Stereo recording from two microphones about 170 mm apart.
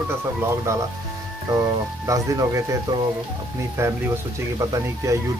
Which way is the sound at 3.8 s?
15° right (ahead or behind).